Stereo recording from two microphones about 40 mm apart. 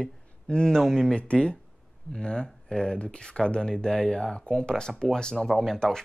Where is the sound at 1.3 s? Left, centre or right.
Left.